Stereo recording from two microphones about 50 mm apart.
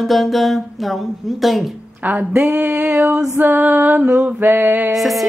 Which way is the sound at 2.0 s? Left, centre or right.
Right.